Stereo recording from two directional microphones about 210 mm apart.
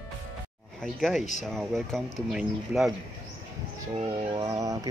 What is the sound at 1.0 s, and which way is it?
Speech, centre (ahead or behind).